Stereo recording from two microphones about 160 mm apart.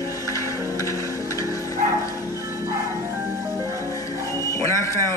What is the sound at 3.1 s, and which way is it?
Music, 15° right (ahead or behind).